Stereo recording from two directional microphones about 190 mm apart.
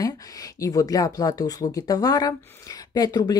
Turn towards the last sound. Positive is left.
turn(degrees=20)  # may be behind; listen again after turning